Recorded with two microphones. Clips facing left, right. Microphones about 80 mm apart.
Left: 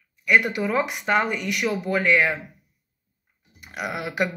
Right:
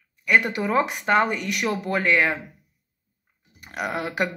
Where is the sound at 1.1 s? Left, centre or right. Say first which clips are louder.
Right 1 dB; right.